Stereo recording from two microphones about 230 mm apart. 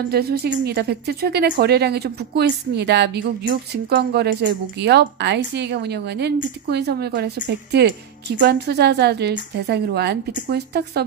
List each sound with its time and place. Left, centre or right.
0.1 s speech: right